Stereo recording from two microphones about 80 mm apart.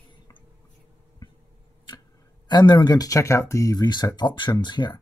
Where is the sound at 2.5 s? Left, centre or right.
Left.